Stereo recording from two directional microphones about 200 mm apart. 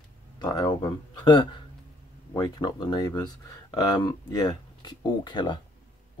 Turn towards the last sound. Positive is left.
turn(degrees=20)  # may be behind; listen again after turning